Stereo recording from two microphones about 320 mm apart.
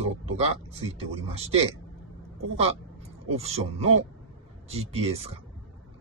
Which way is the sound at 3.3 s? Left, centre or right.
Centre.